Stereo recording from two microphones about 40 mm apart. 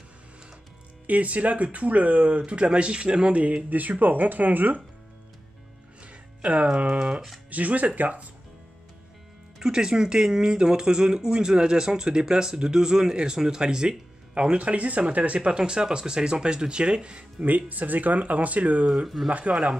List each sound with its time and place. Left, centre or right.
1.0 s speech: right
6.0 s speech: right
7.5 s speech: right
9.6 s speech: centre
17.5 s speech: right